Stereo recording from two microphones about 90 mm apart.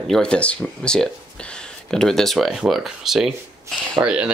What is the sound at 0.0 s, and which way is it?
Speech, 5° left (ahead or behind).